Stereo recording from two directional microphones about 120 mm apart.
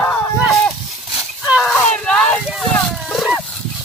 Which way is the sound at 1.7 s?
10° left (ahead or behind).